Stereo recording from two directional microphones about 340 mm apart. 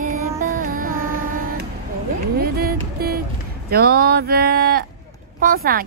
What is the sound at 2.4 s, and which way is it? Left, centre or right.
Music, right.